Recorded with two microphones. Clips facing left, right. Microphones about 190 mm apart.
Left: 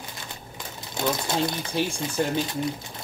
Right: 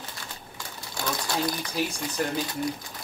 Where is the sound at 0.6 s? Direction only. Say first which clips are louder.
Left 5 dB; 20° left (ahead or behind).